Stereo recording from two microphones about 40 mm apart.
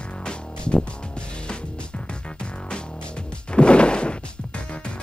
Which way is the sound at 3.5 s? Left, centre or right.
Left.